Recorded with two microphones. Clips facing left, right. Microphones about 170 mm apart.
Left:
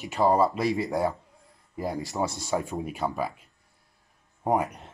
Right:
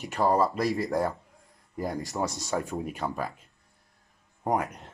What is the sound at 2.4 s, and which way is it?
Speech, 15° left (ahead or behind).